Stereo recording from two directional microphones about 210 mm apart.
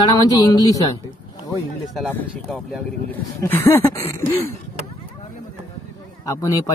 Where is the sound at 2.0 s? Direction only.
5° left (ahead or behind).